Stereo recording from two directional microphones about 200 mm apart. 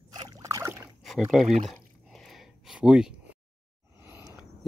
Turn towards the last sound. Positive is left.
turn(degrees=-10)  # may be behind; listen again after turning